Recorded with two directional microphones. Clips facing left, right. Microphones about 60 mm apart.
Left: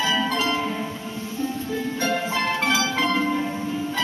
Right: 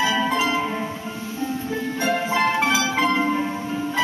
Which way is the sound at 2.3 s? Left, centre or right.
Centre.